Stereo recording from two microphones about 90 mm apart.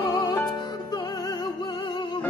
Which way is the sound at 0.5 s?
45° left (ahead or behind).